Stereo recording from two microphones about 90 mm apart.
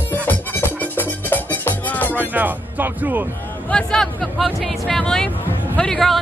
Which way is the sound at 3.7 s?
10° left (ahead or behind).